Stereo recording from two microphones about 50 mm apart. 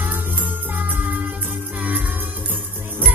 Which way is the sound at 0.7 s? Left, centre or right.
Right.